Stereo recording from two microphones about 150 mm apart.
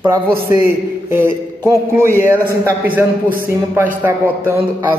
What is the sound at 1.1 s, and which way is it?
Speech, 20° right (ahead or behind).